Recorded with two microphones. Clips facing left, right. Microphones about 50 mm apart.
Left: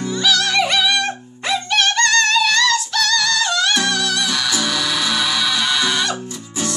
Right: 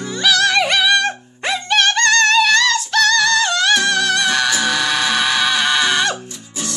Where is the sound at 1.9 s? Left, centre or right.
Centre.